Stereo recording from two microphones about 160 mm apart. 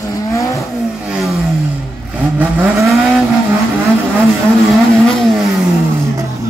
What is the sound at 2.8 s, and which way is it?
Vehicle, centre (ahead or behind).